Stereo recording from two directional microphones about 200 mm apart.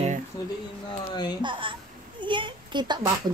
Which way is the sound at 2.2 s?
25° right (ahead or behind).